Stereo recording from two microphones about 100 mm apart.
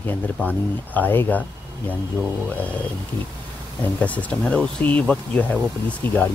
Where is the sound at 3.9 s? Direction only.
15° left (ahead or behind).